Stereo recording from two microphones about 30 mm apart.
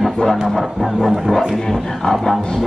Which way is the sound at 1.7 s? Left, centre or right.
Centre.